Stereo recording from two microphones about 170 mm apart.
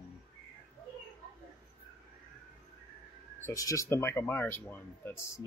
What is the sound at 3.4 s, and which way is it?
Speech, 20° left (ahead or behind).